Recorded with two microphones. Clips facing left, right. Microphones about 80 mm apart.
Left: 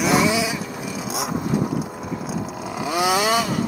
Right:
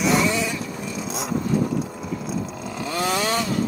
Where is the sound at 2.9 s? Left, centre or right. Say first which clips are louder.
Left 4 dB; centre.